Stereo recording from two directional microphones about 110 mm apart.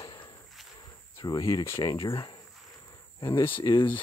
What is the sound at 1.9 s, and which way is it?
Speech, 55° left (ahead or behind).